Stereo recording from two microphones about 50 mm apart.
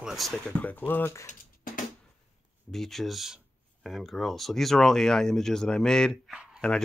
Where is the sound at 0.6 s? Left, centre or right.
Left.